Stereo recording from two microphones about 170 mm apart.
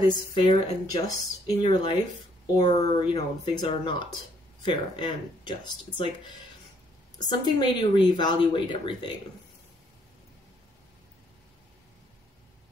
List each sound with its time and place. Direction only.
0.0 s speech: 30° left (ahead or behind)
7.2 s speech: 25° left (ahead or behind)